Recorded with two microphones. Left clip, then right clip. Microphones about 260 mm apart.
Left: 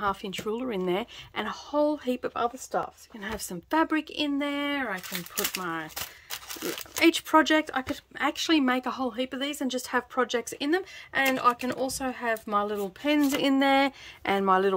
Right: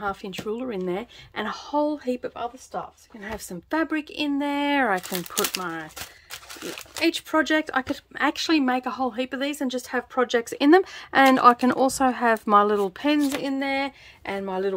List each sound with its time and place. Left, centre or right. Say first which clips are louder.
0.0 s speech: even; centre
7.0 s speech: left 2 dB; centre
13.2 s speech: left 2 dB; centre